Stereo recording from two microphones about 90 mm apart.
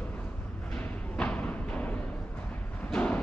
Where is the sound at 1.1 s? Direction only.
15° left (ahead or behind).